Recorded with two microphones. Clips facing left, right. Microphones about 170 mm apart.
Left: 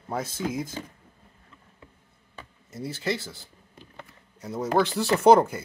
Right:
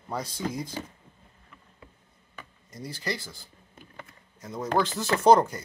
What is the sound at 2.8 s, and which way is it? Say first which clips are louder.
Speech: left 4 dB; 25° left (ahead or behind).